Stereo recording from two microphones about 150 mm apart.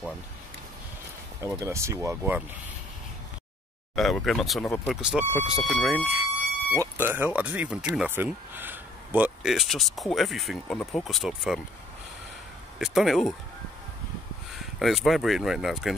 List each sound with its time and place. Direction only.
1.4 s speech: 20° right (ahead or behind)
3.9 s speech: centre (ahead or behind)
12.7 s speech: centre (ahead or behind)
14.8 s speech: centre (ahead or behind)